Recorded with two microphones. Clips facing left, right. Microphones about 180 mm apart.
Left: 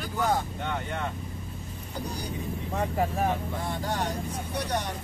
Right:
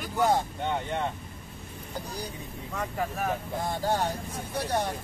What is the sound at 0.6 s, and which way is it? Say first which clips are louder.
Speech: right 2 dB; 25° right (ahead or behind).